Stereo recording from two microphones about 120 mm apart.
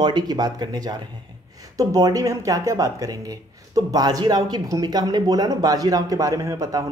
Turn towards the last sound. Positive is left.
turn(degrees=-25)  # may be behind; listen again after turning